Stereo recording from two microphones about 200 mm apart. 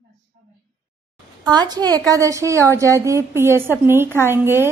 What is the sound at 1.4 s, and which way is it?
A woman's voice, 20° right (ahead or behind).